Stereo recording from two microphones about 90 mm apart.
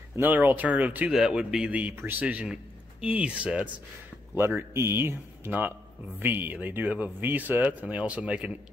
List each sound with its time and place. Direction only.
0.1 s speech: 20° right (ahead or behind)
4.4 s speech: 30° right (ahead or behind)